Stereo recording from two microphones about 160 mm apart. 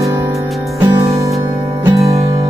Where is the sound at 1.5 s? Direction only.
20° right (ahead or behind).